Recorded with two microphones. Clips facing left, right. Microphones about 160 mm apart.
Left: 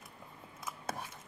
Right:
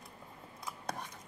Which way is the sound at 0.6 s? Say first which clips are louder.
Even; 5° left (ahead or behind).